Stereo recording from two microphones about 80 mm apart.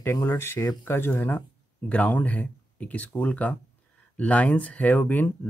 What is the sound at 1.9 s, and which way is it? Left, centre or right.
Speech, centre.